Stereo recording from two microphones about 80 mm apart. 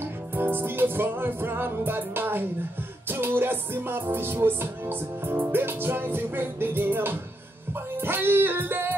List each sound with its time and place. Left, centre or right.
0.4 s music: right